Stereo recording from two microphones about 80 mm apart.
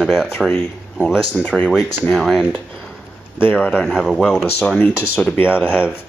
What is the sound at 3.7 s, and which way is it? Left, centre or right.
Speech, centre.